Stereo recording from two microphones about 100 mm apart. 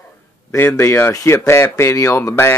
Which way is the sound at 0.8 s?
25° left (ahead or behind).